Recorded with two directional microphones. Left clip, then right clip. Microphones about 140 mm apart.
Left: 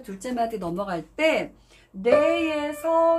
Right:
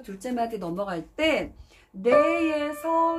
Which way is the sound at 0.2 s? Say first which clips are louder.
Left 2 dB; 10° right (ahead or behind).